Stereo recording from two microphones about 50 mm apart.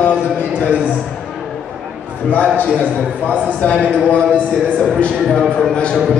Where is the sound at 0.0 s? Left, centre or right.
Left.